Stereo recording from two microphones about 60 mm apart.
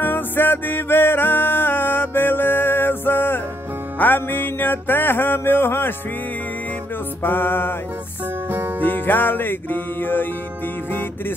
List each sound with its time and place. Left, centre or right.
0.0 s music: left
7.2 s music: left
8.5 s music: right
8.8 s music: left